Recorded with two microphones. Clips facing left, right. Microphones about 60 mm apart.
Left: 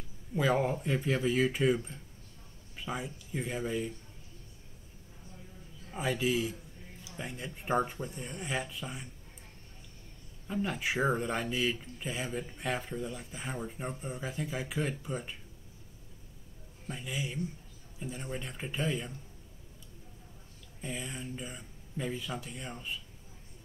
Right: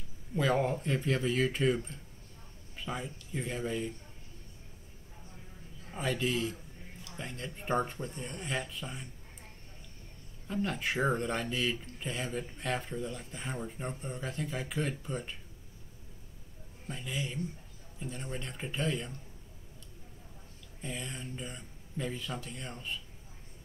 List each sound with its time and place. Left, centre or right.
0.4 s speech: centre
5.9 s speech: centre
10.5 s speech: centre
16.8 s speech: centre
20.8 s speech: centre